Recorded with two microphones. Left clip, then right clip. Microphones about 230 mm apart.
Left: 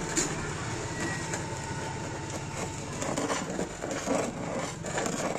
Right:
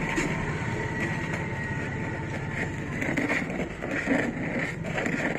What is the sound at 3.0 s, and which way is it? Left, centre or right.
Vehicle, left.